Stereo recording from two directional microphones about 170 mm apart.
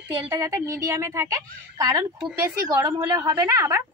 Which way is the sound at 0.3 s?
15° right (ahead or behind).